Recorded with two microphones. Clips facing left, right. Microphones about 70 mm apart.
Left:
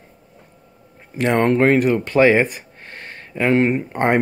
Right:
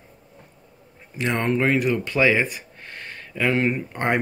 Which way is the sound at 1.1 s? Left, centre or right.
Left.